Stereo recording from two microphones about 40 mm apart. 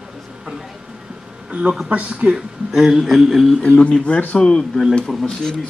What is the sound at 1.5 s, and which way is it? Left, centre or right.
Speech, right.